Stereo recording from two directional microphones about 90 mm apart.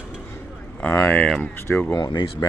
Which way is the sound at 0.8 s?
20° left (ahead or behind).